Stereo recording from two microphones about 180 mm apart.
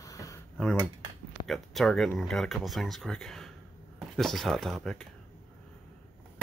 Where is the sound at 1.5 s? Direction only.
Centre (ahead or behind).